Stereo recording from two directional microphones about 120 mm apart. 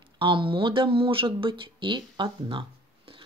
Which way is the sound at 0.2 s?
45° right (ahead or behind).